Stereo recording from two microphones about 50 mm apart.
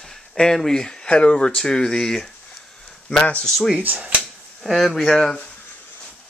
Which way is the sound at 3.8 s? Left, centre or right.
Right.